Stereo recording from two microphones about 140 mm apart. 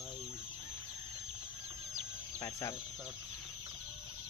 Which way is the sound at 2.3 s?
25° left (ahead or behind).